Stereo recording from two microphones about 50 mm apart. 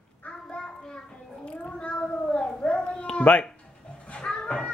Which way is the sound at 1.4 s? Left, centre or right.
Centre.